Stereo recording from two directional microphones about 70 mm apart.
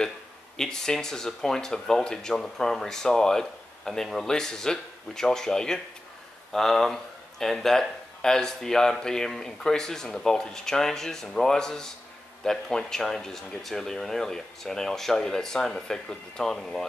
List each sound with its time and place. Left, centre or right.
0.6 s speech: centre